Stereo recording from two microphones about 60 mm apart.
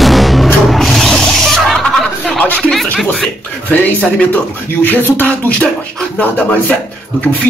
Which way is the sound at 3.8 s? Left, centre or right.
Left.